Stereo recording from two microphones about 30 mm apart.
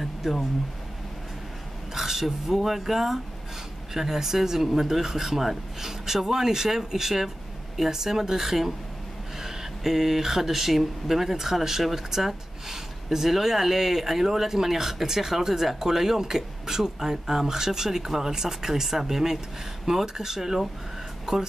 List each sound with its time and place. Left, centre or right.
0.2 s speech: centre
2.0 s speech: centre